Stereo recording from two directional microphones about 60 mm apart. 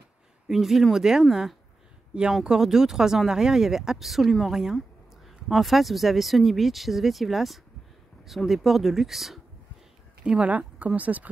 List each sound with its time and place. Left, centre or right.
0.5 s speech: centre
10.2 s speech: right